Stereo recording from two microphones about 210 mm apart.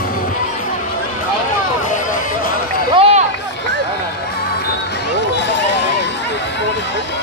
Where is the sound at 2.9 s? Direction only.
25° right (ahead or behind).